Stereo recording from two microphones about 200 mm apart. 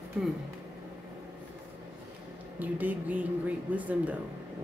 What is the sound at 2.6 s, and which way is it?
Speech, 10° right (ahead or behind).